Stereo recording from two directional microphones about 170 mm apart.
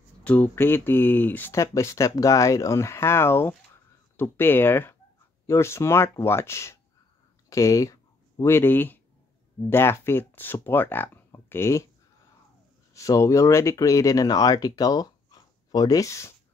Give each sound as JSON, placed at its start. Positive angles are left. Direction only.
{"t": 0.2, "sound": "speech", "side_deg": 10}
{"t": 12.9, "sound": "speech", "side_deg": 20}